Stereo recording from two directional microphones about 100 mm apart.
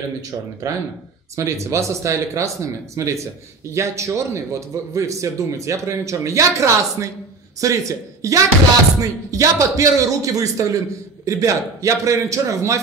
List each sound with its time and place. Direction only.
0.6 s a man's voice: 35° right (ahead or behind)